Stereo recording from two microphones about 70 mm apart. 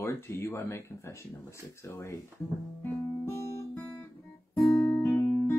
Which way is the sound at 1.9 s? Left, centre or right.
Left.